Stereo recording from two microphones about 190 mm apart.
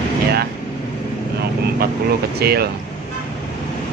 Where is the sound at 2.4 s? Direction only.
55° right (ahead or behind).